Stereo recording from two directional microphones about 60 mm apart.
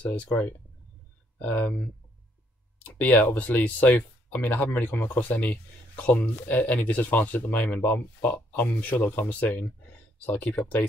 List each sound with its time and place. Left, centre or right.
0.0 s speech: left
2.8 s speech: left